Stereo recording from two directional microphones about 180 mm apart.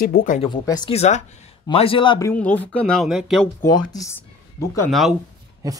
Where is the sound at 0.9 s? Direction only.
35° left (ahead or behind).